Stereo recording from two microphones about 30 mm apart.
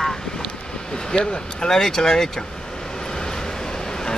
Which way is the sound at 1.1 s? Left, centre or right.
Left.